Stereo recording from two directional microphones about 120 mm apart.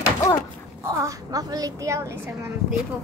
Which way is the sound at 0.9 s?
30° right (ahead or behind).